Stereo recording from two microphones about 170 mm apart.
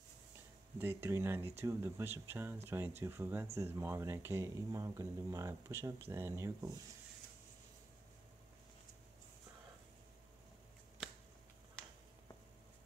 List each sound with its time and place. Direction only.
0.7 s speech: 15° right (ahead or behind)